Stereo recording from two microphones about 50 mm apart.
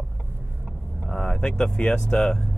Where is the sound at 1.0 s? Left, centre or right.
Centre.